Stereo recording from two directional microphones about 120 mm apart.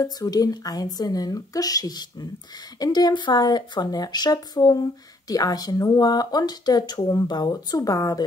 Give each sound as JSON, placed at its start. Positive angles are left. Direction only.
{"t": 0.0, "sound": "speech", "side_deg": 30}